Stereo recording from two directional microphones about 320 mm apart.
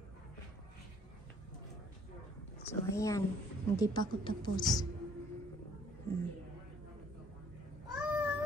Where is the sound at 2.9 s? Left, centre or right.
Centre.